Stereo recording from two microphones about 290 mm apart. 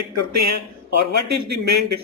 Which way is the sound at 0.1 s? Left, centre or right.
Right.